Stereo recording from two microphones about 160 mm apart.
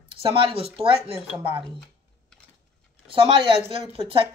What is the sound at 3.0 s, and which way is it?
Speech, 35° right (ahead or behind).